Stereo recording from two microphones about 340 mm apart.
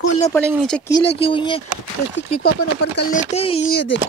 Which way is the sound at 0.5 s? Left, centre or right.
Centre.